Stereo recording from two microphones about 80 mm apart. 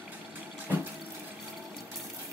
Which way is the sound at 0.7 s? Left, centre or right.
Right.